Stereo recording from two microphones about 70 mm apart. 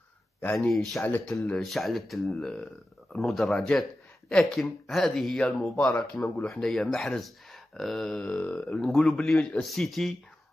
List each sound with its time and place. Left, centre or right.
0.6 s speech: centre
1.0 s speech: left
1.6 s speech: centre
5.4 s speech: centre